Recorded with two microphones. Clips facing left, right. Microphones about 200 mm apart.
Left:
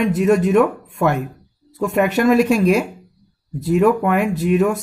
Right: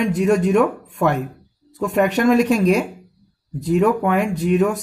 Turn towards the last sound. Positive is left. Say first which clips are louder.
# left 1 dB
turn(degrees=5)  # may be behind; listen again after turning